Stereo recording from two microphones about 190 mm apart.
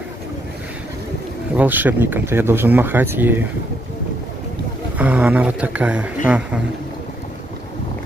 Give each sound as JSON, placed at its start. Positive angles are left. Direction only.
{"t": 1.6, "sound": "speech", "side_deg": -10}
{"t": 4.9, "sound": "a man's voice", "side_deg": -5}